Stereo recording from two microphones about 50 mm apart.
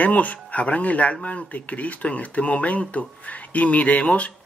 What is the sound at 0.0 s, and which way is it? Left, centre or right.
Speech, left.